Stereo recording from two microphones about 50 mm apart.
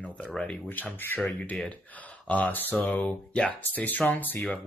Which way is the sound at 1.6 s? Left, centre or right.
Left.